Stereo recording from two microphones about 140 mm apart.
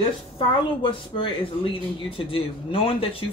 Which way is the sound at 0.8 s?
35° left (ahead or behind).